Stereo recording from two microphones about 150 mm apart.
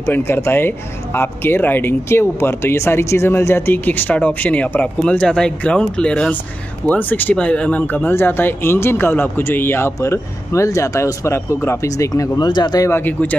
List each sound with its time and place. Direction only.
0.0 s speech: 15° left (ahead or behind)